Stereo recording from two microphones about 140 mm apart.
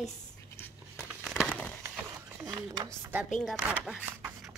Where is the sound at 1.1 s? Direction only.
5° right (ahead or behind).